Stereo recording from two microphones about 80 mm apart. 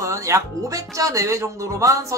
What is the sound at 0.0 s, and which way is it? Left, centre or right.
Speech, right.